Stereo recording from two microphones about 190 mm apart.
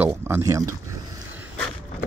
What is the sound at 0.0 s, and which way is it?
Speech, 10° right (ahead or behind).